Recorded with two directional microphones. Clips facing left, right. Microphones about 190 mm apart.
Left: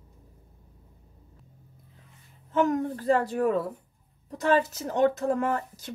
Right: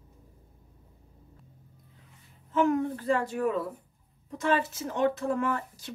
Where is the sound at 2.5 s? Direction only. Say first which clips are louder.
Left 1 dB; 40° left (ahead or behind).